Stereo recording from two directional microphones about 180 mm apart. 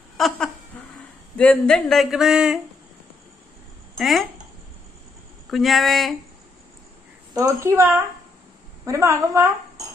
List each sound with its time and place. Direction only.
0.2 s speech: centre (ahead or behind)
0.7 s a sound: 5° left (ahead or behind)
1.3 s speech: 5° left (ahead or behind)
3.9 s speech: centre (ahead or behind)
5.5 s speech: centre (ahead or behind)
7.3 s a woman's voice: 15° right (ahead or behind)